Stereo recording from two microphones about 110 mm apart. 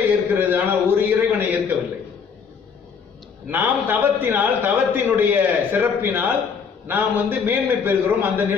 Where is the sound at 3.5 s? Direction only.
15° right (ahead or behind).